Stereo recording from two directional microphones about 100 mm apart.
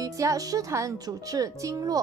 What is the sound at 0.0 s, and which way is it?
A woman's voice, 35° right (ahead or behind).